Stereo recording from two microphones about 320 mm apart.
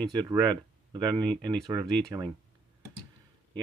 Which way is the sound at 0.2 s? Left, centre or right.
Centre.